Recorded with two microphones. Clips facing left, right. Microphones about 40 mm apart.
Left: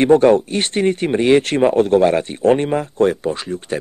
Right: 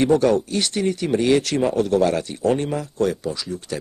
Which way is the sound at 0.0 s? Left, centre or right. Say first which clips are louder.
Left 6 dB; left.